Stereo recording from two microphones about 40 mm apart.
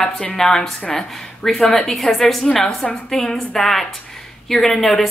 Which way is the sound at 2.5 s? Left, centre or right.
Centre.